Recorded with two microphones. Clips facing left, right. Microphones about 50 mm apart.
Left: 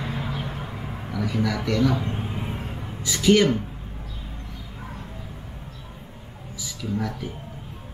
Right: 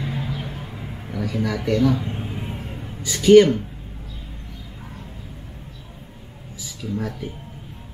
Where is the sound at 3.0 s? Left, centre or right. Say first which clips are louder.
Right 7 dB; centre.